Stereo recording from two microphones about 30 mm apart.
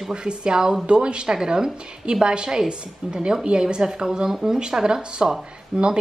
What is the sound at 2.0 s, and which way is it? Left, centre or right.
A woman's voice, right.